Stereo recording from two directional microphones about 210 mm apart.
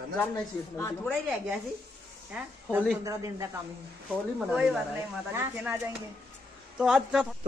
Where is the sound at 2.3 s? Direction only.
10° right (ahead or behind).